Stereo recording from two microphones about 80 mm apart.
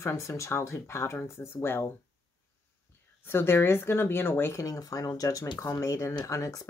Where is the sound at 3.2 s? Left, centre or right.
Left.